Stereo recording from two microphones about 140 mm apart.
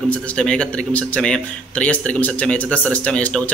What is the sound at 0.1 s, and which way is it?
A man's voice, 5° left (ahead or behind).